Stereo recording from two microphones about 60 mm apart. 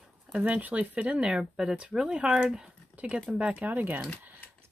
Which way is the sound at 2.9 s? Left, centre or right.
Right.